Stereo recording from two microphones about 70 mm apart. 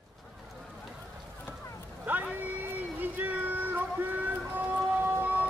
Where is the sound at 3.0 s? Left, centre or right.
Right.